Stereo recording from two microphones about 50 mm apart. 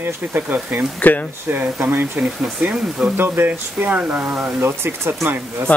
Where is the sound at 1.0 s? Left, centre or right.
Left.